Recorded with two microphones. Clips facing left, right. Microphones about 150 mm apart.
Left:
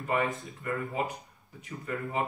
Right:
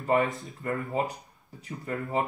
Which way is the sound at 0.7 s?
35° right (ahead or behind).